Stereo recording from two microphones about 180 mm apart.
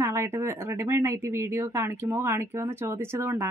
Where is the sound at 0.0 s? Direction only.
15° right (ahead or behind).